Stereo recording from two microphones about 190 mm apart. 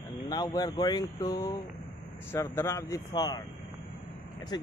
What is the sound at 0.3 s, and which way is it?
Speech, 20° left (ahead or behind).